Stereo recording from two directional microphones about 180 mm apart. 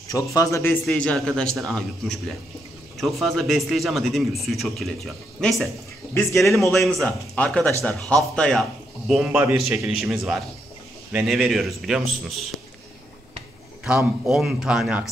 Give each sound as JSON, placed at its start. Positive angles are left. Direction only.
{"t": 0.1, "sound": "speech", "side_deg": 20}
{"t": 0.8, "sound": "speech", "side_deg": 5}
{"t": 13.8, "sound": "speech", "side_deg": -5}